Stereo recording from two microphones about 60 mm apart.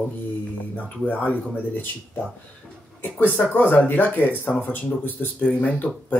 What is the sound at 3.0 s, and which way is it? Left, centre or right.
Speech, left.